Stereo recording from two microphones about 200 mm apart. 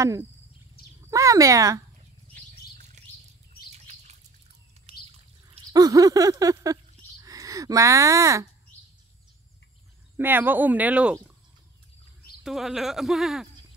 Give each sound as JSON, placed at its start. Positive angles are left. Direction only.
{"t": 0.0, "sound": "speech", "side_deg": -15}
{"t": 3.7, "sound": "bird flight", "side_deg": -35}
{"t": 4.9, "sound": "bird", "side_deg": -30}
{"t": 5.5, "sound": "a sound", "side_deg": -20}
{"t": 10.1, "sound": "speech", "side_deg": -10}
{"t": 12.4, "sound": "speech", "side_deg": 0}